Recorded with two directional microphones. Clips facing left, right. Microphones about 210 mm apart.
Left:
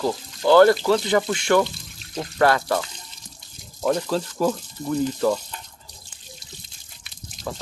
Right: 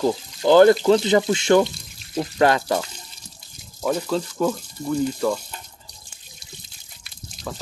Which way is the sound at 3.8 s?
5° right (ahead or behind).